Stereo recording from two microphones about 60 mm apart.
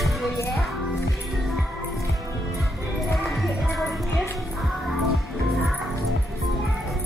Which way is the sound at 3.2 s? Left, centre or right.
Centre.